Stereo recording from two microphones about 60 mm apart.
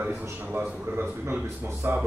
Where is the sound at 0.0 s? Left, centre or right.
Right.